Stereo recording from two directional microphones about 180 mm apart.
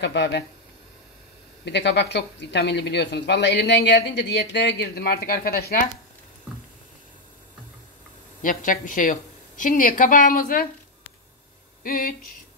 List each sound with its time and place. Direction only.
0.0 s speech: 75° left (ahead or behind)
1.6 s speech: 70° left (ahead or behind); by 5.8 s 55° left (ahead or behind)
8.4 s a woman's voice: 50° left (ahead or behind)
11.8 s a woman's voice: 50° left (ahead or behind)